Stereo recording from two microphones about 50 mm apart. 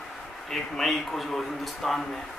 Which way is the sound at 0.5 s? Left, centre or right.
Centre.